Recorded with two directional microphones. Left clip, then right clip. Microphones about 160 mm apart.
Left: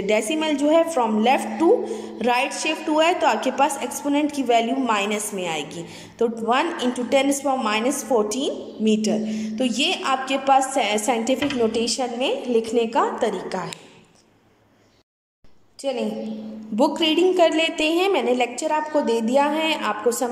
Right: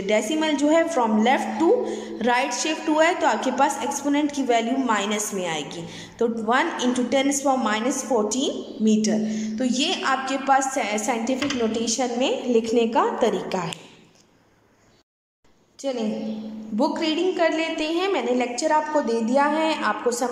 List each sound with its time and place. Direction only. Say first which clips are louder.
0.0 s a woman's voice: left 1 dB; 10° left (ahead or behind)
15.8 s a woman's voice: left 1 dB; 10° left (ahead or behind)